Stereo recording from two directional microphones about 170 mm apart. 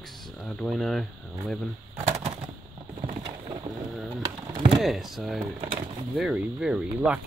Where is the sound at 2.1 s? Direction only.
35° right (ahead or behind).